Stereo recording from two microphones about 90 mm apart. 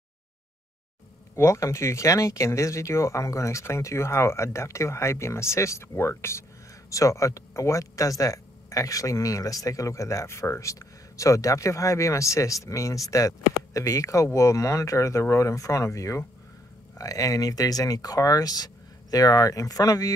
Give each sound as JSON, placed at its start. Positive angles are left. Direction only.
{"t": 1.3, "sound": "speech", "side_deg": 35}